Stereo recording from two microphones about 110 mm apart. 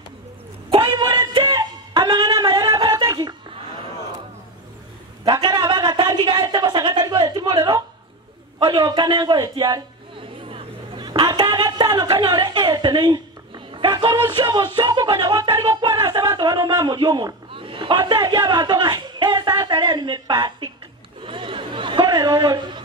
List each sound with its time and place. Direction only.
0.7 s a sound: 45° right (ahead or behind)
5.2 s a sound: 40° right (ahead or behind)
8.8 s speech: 40° right (ahead or behind)
10.1 s a sound: 50° right (ahead or behind)
12.1 s speech: 50° right (ahead or behind)
13.7 s music: 50° right (ahead or behind)
14.2 s speech: 50° right (ahead or behind)
15.6 s music: 35° right (ahead or behind)
16.1 s a man's voice: 35° right (ahead or behind)
21.2 s chatter: 50° right (ahead or behind)